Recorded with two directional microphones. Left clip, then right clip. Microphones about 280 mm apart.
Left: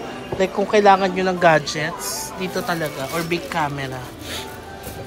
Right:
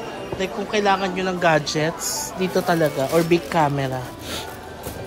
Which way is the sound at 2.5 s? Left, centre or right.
Right.